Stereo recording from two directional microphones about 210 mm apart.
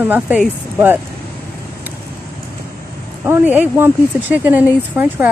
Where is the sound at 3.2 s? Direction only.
10° right (ahead or behind).